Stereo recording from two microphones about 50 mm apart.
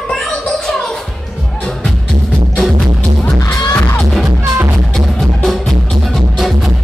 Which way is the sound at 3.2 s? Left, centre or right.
Left.